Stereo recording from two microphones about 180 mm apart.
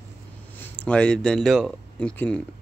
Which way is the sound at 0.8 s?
5° left (ahead or behind).